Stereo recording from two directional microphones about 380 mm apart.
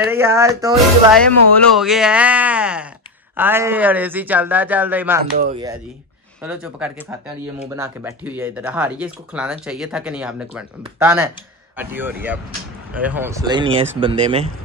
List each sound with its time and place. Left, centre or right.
0.0 s speech: centre
5.2 s speech: right
6.4 s speech: centre